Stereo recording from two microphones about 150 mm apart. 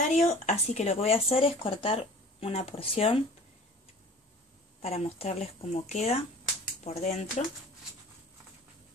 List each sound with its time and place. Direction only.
0.1 s speech: 50° left (ahead or behind)
4.8 s speech: 40° left (ahead or behind)